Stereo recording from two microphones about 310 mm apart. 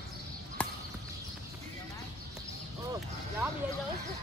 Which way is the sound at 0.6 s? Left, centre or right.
Centre.